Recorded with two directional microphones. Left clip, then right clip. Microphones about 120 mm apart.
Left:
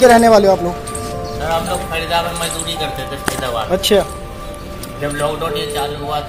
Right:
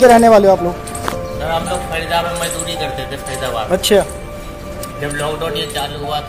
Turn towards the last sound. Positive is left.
turn(degrees=-20)  # may be behind; listen again after turning